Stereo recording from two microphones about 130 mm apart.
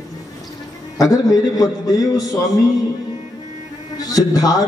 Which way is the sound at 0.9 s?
25° left (ahead or behind).